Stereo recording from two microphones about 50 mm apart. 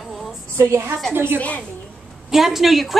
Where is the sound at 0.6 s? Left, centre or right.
Right.